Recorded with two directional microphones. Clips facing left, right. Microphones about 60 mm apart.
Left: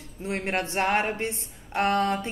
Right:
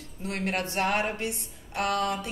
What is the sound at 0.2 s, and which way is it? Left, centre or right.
Speech, left.